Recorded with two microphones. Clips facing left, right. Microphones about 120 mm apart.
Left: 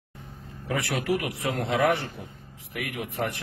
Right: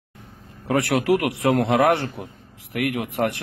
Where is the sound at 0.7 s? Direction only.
75° right (ahead or behind).